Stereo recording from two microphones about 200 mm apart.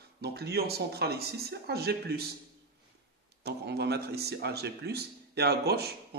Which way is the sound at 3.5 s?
55° right (ahead or behind).